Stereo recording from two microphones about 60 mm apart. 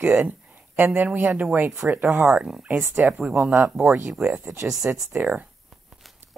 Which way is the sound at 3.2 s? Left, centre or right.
Right.